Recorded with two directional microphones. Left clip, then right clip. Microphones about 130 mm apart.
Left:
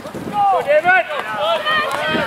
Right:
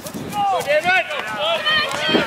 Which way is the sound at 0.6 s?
30° right (ahead or behind).